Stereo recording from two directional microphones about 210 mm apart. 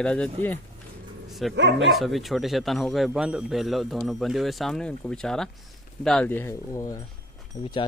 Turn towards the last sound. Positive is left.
turn(degrees=20)  # may be behind; listen again after turning